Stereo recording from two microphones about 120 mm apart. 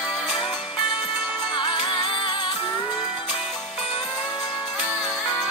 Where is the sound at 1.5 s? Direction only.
45° left (ahead or behind).